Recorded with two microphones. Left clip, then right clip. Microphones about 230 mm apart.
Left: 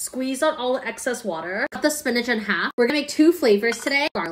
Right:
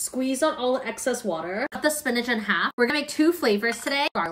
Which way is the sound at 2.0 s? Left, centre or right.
Centre.